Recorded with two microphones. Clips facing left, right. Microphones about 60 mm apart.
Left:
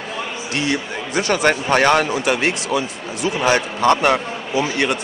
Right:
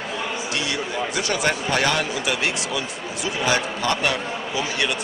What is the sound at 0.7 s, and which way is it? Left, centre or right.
A man's voice, left.